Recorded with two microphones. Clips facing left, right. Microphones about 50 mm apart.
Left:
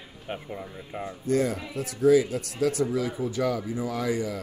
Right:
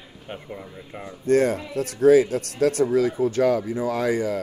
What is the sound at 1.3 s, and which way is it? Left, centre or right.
A man's voice, right.